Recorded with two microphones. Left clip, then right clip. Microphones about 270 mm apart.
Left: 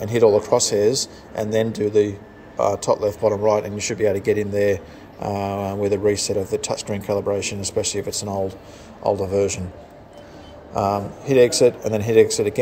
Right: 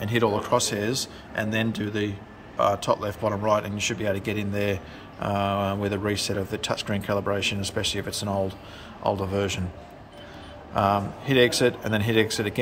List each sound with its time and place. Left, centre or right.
0.0 s a man's voice: centre
5.5 s speech: right
5.8 s speech: centre
9.3 s speech: centre
10.7 s a man's voice: centre